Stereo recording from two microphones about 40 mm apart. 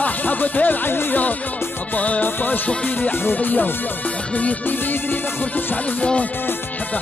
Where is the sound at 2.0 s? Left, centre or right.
Left.